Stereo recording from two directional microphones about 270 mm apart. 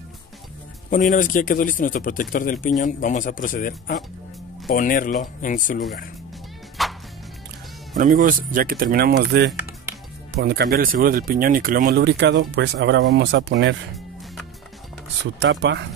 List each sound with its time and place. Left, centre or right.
0.8 s speech: left
6.8 s music: centre
8.0 s speech: right
15.3 s speech: right